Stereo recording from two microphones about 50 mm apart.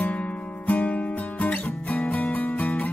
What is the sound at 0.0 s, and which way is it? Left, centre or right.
Music, left.